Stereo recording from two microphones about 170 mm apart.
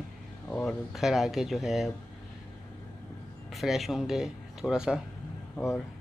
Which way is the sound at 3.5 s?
Centre (ahead or behind).